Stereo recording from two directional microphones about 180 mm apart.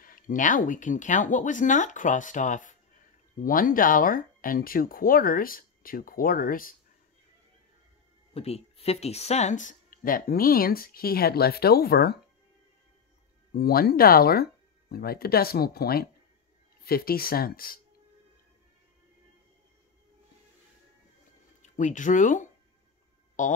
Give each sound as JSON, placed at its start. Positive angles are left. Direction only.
{"t": 0.0, "sound": "speech", "side_deg": 50}
{"t": 8.4, "sound": "speech", "side_deg": 35}
{"t": 13.5, "sound": "speech", "side_deg": 60}
{"t": 21.6, "sound": "speech", "side_deg": 45}